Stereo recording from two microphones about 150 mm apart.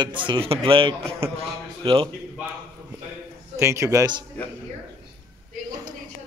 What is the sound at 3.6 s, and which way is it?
Speech, 20° right (ahead or behind).